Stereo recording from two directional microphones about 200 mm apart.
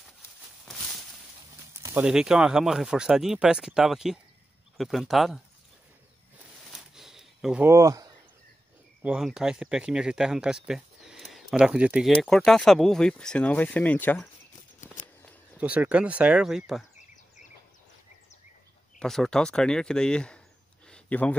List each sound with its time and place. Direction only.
1.7 s speech: 15° right (ahead or behind)
6.7 s a sound: centre (ahead or behind)
7.6 s speech: 15° right (ahead or behind)
9.0 s speech: 5° right (ahead or behind)
15.5 s speech: 5° right (ahead or behind)
18.9 s speech: centre (ahead or behind)